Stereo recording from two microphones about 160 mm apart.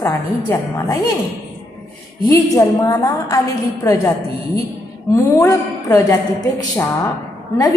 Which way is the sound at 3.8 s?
20° left (ahead or behind).